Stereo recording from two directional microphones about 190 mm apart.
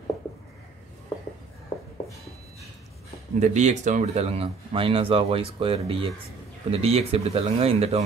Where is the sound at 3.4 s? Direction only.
40° right (ahead or behind).